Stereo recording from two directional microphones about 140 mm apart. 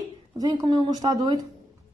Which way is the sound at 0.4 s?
30° right (ahead or behind).